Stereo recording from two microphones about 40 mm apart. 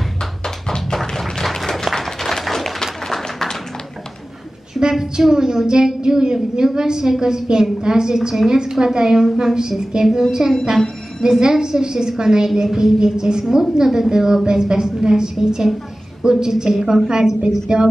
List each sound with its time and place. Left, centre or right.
0.7 s tap: centre
0.9 s applause: centre
4.7 s a woman's voice: centre
11.2 s a woman's voice: centre